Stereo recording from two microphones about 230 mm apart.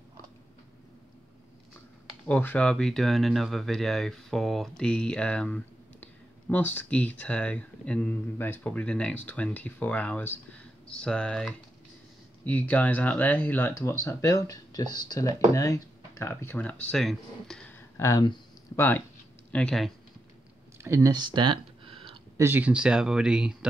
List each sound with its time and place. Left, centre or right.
2.2 s speech: centre
19.5 s speech: centre
20.7 s a sound: centre
22.4 s speech: centre